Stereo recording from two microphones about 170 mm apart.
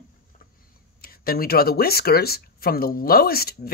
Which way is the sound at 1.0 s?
60° left (ahead or behind).